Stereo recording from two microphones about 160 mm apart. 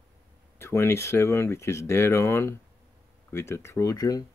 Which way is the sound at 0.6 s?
15° left (ahead or behind).